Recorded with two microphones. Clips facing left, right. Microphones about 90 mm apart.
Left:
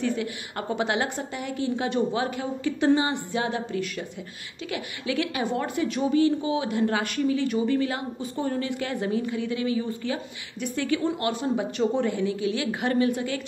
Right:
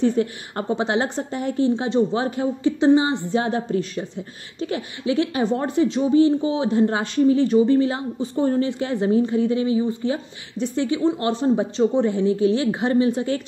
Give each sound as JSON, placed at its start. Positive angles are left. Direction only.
{"t": 0.0, "sound": "a woman's voice", "side_deg": -35}
{"t": 1.7, "sound": "speech", "side_deg": -25}
{"t": 2.2, "sound": "a woman's voice", "side_deg": -35}
{"t": 2.8, "sound": "speech", "side_deg": -20}
{"t": 3.3, "sound": "a woman's voice", "side_deg": -35}